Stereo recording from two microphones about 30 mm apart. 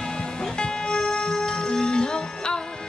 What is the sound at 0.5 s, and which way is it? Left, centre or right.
Music, left.